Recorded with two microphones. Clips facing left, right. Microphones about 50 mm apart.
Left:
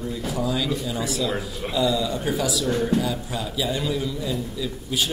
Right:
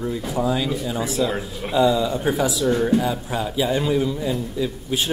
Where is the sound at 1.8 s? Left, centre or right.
Right.